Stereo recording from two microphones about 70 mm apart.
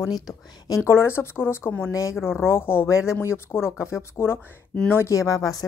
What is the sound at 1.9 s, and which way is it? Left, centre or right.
Speech, left.